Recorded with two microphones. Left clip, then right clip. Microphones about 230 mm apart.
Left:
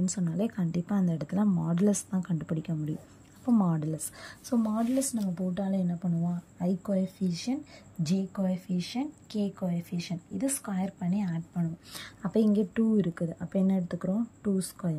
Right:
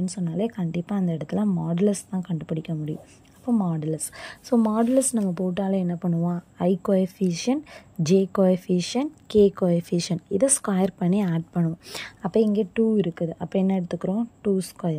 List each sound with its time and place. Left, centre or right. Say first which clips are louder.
0.0 s a woman's voice: right 4 dB; centre; by 11.6 s right
11.9 s a woman's voice: right 6 dB; centre